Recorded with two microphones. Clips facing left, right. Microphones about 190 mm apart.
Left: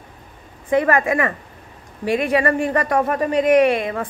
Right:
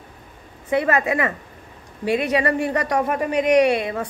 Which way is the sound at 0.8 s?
15° right (ahead or behind).